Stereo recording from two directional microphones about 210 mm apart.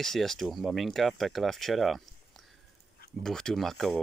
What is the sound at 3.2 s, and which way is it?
Speech, centre (ahead or behind).